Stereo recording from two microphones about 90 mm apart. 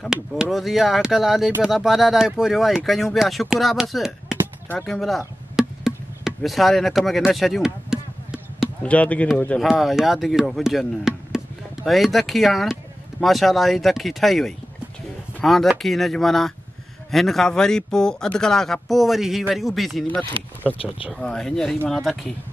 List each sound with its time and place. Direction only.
0.1 s speech: 5° right (ahead or behind)
5.6 s music: 5° right (ahead or behind)
7.3 s basketball bounce: centre (ahead or behind)
8.8 s a man's voice: 15° left (ahead or behind)
9.6 s a man's voice: centre (ahead or behind)
20.7 s speech: 90° left
21.1 s speech: 5° left (ahead or behind)